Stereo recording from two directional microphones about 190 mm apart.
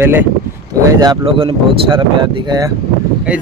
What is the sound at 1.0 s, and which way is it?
Speech, 25° right (ahead or behind).